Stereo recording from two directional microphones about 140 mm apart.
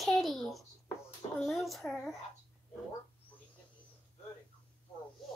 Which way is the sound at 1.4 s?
Centre (ahead or behind).